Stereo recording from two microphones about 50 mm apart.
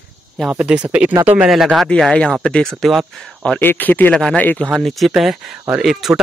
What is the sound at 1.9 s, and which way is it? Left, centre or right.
Speech, centre.